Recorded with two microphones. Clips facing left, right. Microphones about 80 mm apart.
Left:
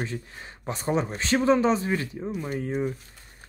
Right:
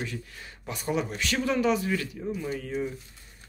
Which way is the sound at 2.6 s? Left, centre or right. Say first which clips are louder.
Left 3 dB; left.